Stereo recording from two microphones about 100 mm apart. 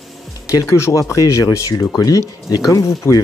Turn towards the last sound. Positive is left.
turn(degrees=30)  # may be behind; listen again after turning